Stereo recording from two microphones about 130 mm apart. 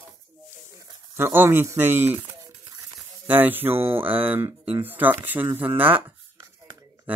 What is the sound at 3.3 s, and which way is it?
Speech, 15° right (ahead or behind).